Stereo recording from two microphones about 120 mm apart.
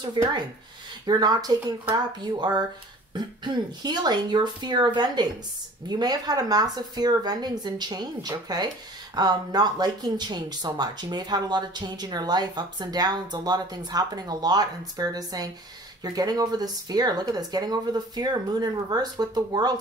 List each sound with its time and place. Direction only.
1.0 s speech: 35° right (ahead or behind)